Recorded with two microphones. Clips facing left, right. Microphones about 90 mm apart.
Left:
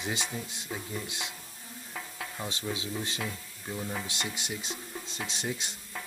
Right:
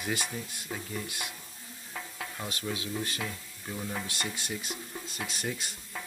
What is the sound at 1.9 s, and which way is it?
Stir, centre (ahead or behind).